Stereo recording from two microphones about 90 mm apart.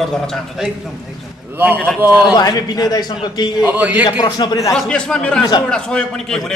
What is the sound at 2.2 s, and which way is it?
Speech, 45° left (ahead or behind).